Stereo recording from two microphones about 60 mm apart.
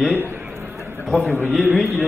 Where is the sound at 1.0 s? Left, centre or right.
Centre.